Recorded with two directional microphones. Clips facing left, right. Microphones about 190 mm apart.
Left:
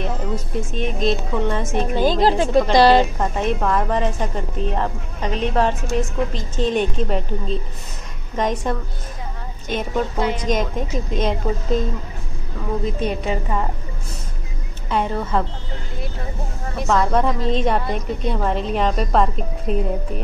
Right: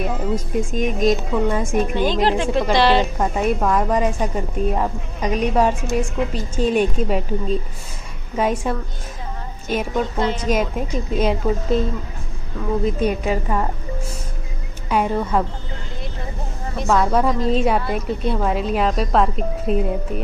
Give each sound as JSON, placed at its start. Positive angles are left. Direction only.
{"t": 0.6, "sound": "a woman's voice", "side_deg": -10}
{"t": 1.8, "sound": "a woman's voice", "side_deg": 40}
{"t": 3.2, "sound": "a woman's voice", "side_deg": -10}
{"t": 10.1, "sound": "a woman's voice", "side_deg": 10}
{"t": 10.4, "sound": "a woman's voice", "side_deg": -5}
{"t": 13.0, "sound": "a woman's voice", "side_deg": -10}
{"t": 14.9, "sound": "a woman's voice", "side_deg": -10}
{"t": 16.7, "sound": "a woman's voice", "side_deg": 0}